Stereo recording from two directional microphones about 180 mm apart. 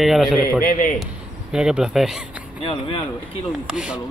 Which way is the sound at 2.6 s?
30° left (ahead or behind).